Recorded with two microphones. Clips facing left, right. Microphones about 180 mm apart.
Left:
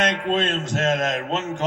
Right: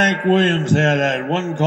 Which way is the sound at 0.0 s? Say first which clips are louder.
Right 6 dB; 60° right (ahead or behind).